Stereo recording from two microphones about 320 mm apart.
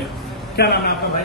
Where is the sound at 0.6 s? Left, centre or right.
Left.